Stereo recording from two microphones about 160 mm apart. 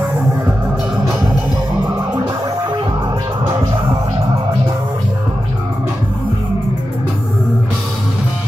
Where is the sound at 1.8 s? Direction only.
20° right (ahead or behind).